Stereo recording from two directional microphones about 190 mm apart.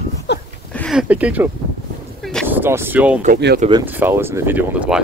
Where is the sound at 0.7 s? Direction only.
5° left (ahead or behind).